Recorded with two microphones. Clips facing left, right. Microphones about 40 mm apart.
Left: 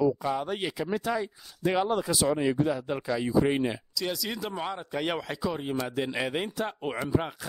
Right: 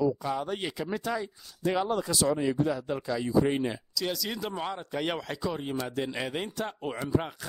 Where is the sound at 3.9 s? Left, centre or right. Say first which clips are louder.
Even; centre.